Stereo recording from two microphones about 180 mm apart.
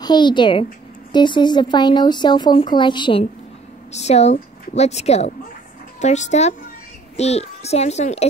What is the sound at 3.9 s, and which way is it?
A child's voice, 40° left (ahead or behind).